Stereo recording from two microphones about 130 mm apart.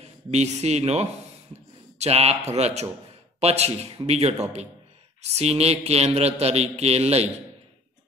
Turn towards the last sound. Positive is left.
turn(degrees=-55)  # may be behind; listen again after turning